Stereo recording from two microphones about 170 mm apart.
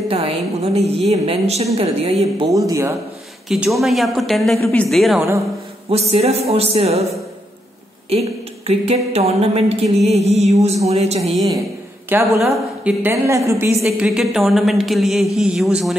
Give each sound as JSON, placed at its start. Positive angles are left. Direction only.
{"t": 0.1, "sound": "a woman's voice", "side_deg": -35}
{"t": 2.5, "sound": "speech", "side_deg": -20}
{"t": 3.4, "sound": "a woman's voice", "side_deg": -5}
{"t": 4.6, "sound": "a woman's voice", "side_deg": 15}
{"t": 4.8, "sound": "a woman's voice", "side_deg": 0}
{"t": 5.9, "sound": "a woman's voice", "side_deg": -35}
{"t": 8.1, "sound": "a woman's voice", "side_deg": -35}
{"t": 12.1, "sound": "a woman's voice", "side_deg": -15}
{"t": 13.8, "sound": "a woman's voice", "side_deg": 0}